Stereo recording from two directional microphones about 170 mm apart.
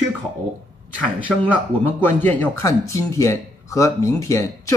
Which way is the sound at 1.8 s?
10° left (ahead or behind).